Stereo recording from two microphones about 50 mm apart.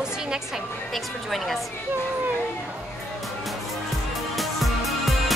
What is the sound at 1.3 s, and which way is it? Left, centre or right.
Speech, centre.